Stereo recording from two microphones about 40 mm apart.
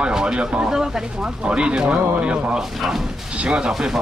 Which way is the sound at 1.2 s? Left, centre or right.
Right.